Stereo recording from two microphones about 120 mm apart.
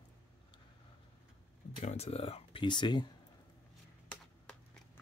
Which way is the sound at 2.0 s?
55° left (ahead or behind).